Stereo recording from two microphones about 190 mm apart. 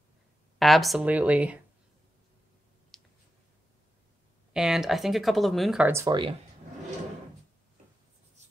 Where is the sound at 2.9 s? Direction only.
Centre (ahead or behind).